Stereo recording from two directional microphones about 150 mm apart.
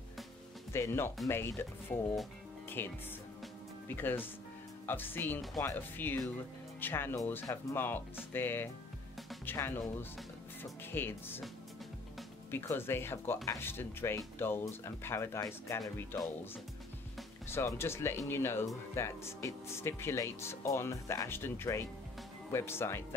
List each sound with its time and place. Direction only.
0.7 s speech: 15° left (ahead or behind)
12.4 s speech: 15° left (ahead or behind)
17.5 s speech: 15° left (ahead or behind)